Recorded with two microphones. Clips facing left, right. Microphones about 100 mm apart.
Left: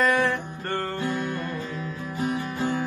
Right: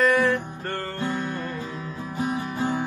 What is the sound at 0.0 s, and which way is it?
Music, centre (ahead or behind).